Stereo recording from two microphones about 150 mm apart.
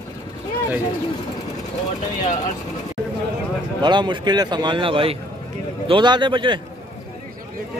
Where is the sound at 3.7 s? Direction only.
30° right (ahead or behind).